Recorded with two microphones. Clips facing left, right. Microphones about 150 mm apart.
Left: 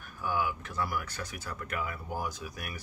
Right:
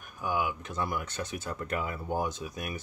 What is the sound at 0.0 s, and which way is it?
Speech, 15° right (ahead or behind).